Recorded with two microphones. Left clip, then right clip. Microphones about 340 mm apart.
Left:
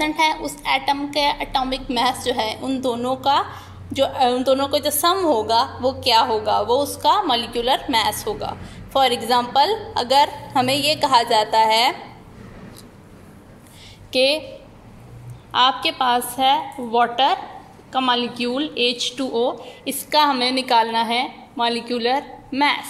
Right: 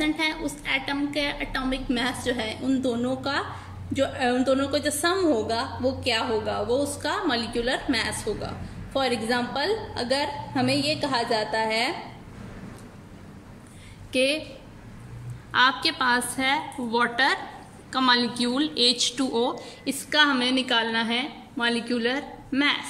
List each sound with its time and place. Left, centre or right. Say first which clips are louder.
0.0 s a woman's voice: left 7 dB; centre
9.3 s a woman's voice: left 8 dB; centre
14.1 s a woman's voice: left 6 dB; centre
15.5 s a woman's voice: left 4 dB; centre